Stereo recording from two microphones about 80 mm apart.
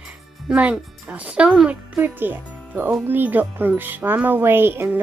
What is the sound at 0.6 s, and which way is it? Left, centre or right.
Speech, centre.